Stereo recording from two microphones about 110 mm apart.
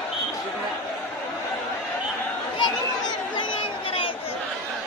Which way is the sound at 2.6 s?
45° left (ahead or behind).